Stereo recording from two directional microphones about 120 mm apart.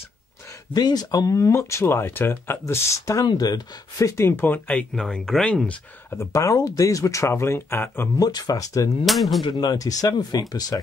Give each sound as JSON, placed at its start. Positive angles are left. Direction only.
{"t": 0.7, "sound": "speech", "side_deg": 35}
{"t": 4.1, "sound": "speech", "side_deg": 20}
{"t": 6.0, "sound": "speech", "side_deg": 25}
{"t": 8.2, "sound": "speech", "side_deg": 35}
{"t": 9.0, "sound": "speech", "side_deg": 0}
{"t": 9.4, "sound": "speech", "side_deg": 35}